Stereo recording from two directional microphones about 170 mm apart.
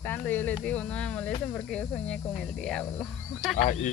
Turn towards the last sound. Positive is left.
turn(degrees=45)  # may be behind; listen again after turning